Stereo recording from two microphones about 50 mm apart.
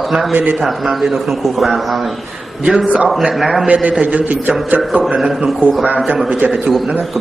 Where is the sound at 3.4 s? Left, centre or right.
Centre.